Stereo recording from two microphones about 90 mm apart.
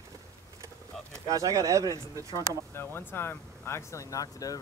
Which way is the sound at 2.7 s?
25° left (ahead or behind).